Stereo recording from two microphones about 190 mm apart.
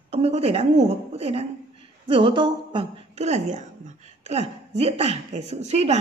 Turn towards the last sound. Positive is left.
turn(degrees=-35)  # may be behind; listen again after turning